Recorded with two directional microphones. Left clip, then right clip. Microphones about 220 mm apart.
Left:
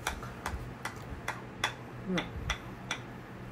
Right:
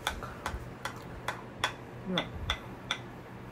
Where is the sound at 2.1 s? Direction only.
15° right (ahead or behind).